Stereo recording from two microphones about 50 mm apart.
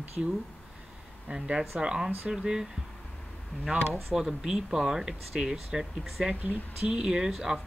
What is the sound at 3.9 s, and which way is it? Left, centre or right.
Speech, centre.